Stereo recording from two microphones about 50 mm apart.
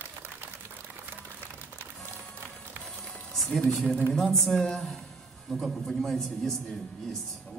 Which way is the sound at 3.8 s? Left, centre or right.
Centre.